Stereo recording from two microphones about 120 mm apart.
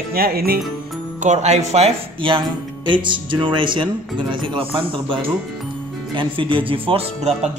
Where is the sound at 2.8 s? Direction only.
40° right (ahead or behind).